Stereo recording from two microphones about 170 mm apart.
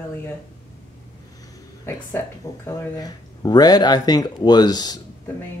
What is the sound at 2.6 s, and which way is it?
Speech, 20° left (ahead or behind).